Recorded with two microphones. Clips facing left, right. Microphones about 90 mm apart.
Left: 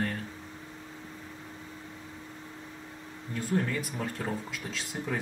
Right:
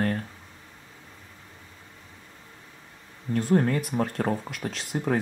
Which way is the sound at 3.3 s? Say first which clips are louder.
Right 7 dB; 60° right (ahead or behind).